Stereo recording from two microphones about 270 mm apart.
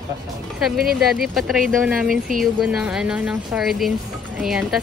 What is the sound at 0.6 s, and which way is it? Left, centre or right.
Speech, centre.